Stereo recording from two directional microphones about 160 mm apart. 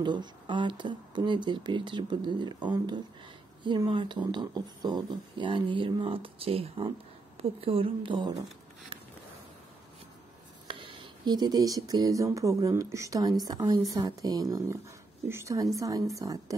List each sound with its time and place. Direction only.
0.0 s speech: 30° right (ahead or behind)
3.6 s speech: 30° right (ahead or behind)
10.7 s speech: 30° right (ahead or behind)